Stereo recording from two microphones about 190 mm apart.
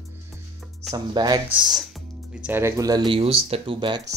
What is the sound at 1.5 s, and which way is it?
Speech, 5° right (ahead or behind).